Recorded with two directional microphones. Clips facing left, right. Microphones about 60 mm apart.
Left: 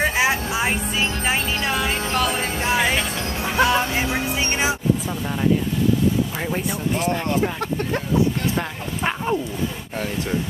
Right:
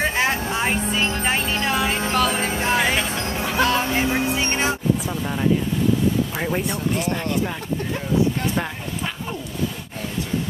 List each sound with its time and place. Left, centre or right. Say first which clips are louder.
0.0 s music: left 1 dB; centre
3.2 s music: right 1 dB; right
3.4 s music: left 2 dB; centre
3.9 s vehicle: right 2 dB; centre
6.3 s speech: right 1 dB; centre